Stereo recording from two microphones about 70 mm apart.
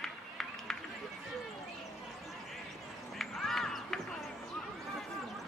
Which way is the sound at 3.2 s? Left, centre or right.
Centre.